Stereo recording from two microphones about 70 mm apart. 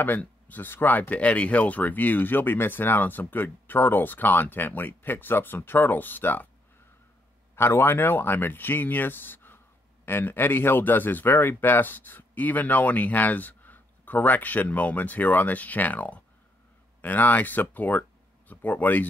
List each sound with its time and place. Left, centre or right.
0.0 s speech: left
7.5 s speech: left